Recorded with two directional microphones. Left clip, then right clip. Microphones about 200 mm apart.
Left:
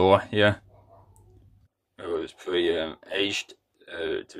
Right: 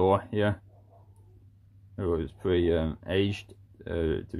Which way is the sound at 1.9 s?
5° left (ahead or behind).